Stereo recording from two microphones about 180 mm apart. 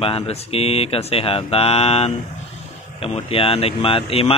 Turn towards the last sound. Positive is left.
turn(degrees=30)  # may be behind; listen again after turning